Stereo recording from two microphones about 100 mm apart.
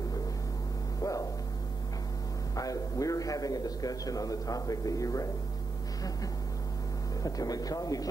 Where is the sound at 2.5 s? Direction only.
35° left (ahead or behind).